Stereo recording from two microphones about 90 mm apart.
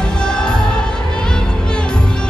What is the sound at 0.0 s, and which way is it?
Music, 10° left (ahead or behind).